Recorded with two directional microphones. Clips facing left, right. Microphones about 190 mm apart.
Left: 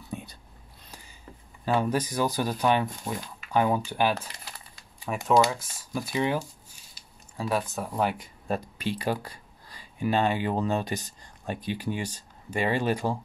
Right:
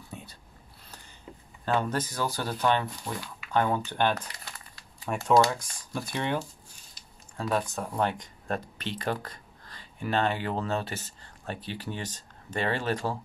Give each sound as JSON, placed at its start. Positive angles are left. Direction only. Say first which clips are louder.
{"t": 0.1, "sound": "whispering", "louder": "left 6 dB", "side_deg": 15}
{"t": 1.7, "sound": "speech", "louder": "left 2 dB", "side_deg": 10}